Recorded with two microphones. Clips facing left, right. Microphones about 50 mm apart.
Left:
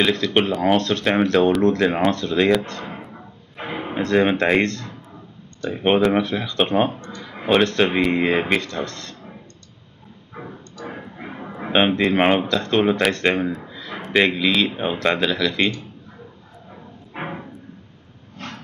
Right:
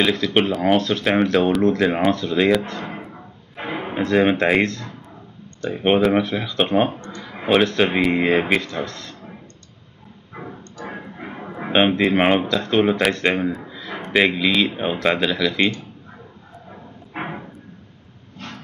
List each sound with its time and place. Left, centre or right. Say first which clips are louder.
0.0 s speech: even; centre
10.3 s music: right 1 dB; centre
11.5 s speech: right 1 dB; centre
17.2 s a sound: right 1 dB; centre